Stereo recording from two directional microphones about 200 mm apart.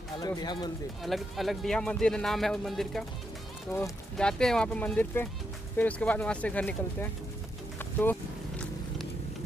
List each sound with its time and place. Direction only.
0.2 s speech: 20° left (ahead or behind)
1.0 s speech: centre (ahead or behind)
7.8 s a sound: 10° left (ahead or behind)